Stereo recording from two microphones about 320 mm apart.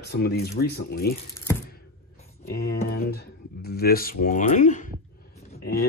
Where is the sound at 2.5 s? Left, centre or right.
Left.